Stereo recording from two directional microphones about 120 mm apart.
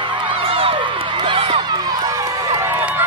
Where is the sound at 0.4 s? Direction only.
50° right (ahead or behind).